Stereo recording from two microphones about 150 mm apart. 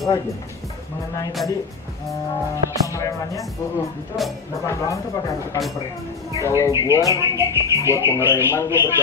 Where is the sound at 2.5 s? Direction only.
20° left (ahead or behind).